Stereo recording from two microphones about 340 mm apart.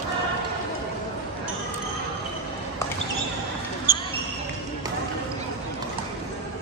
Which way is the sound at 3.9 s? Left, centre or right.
Centre.